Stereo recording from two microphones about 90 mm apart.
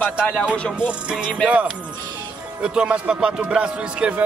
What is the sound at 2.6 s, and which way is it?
Music, 10° right (ahead or behind).